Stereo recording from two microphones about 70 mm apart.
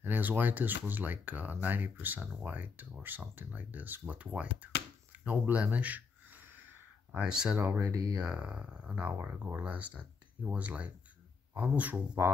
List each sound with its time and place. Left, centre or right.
0.0 s speech: right
5.2 s a sound: right
7.2 s speech: centre
7.5 s speech: right
7.8 s speech: right
8.2 s speech: centre
9.1 s speech: right